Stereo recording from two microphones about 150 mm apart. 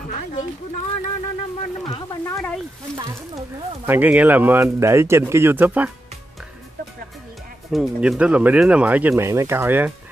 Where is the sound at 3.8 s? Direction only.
10° right (ahead or behind).